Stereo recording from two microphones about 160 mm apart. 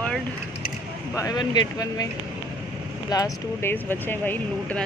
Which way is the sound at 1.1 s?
25° left (ahead or behind).